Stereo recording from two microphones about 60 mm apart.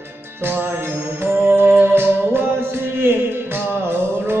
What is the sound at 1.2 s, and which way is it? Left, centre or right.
Music, right.